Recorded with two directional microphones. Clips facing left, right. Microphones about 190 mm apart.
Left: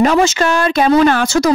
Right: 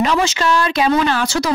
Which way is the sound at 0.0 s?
50° left (ahead or behind).